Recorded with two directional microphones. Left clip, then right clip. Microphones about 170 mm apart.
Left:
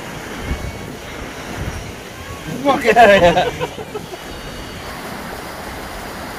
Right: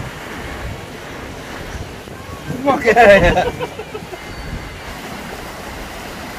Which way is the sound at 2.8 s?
30° right (ahead or behind).